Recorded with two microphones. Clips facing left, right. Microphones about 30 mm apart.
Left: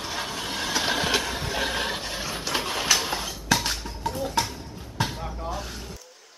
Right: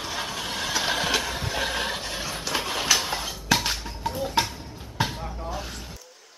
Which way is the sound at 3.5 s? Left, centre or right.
Centre.